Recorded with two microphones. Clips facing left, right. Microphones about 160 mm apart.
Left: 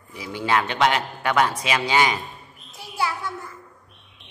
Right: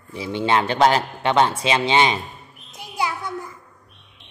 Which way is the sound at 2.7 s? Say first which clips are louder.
Right 1 dB; 20° right (ahead or behind).